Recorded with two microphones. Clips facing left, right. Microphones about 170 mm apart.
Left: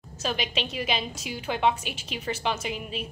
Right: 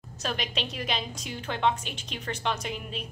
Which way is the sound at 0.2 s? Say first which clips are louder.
Left 3 dB; centre (ahead or behind).